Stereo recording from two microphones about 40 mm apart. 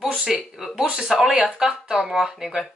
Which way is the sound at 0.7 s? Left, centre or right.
Centre.